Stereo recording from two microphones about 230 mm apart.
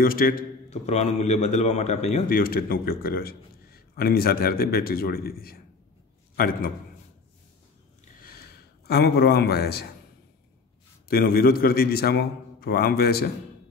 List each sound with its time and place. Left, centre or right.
0.0 s a man's voice: left
8.8 s a man's voice: left
11.1 s a man's voice: left